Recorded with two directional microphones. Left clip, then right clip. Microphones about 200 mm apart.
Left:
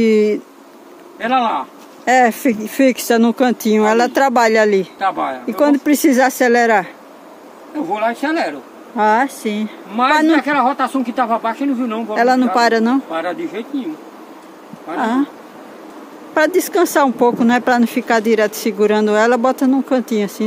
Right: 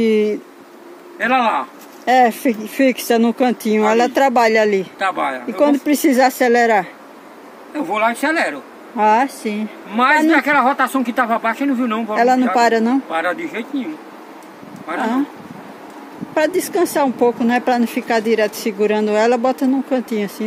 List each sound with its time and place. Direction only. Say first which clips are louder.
0.0 s speech: left 2 dB; 15° left (ahead or behind)
1.2 s a woman's voice: even; 5° right (ahead or behind)
2.0 s speech: left 1 dB; 15° left (ahead or behind)
4.9 s a woman's voice: left 1 dB; 5° right (ahead or behind)
5.6 s speech: left 1 dB; 15° left (ahead or behind)
7.9 s a woman's voice: right 1 dB; 5° right (ahead or behind)
13.1 s a woman's voice: right 1 dB; 5° right (ahead or behind)
16.3 s speech: left 3 dB; 15° left (ahead or behind)